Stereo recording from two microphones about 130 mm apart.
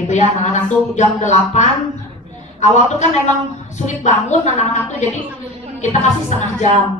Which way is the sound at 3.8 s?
65° left (ahead or behind).